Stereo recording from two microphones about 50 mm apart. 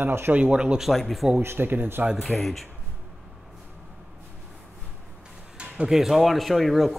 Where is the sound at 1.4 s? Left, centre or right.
Right.